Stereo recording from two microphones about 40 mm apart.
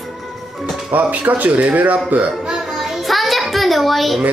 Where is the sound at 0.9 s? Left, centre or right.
Right.